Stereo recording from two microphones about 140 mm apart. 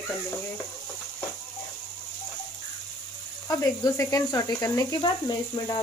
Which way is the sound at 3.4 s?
25° left (ahead or behind).